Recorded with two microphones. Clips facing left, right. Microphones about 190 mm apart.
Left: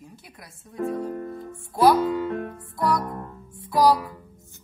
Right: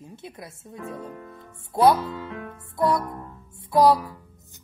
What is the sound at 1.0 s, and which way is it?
Music, 50° left (ahead or behind).